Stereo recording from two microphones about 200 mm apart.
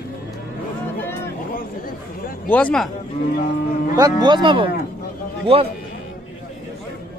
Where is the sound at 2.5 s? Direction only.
5° left (ahead or behind).